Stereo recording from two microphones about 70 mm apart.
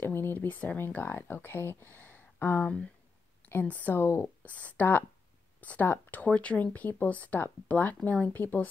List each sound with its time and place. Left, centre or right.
0.0 s speech: left
2.6 s speech: centre; by 4.3 s left
4.5 s speech: left